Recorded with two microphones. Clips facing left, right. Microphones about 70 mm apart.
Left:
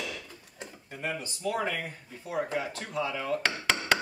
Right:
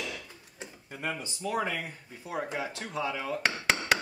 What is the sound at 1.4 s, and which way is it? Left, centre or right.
Speech, centre.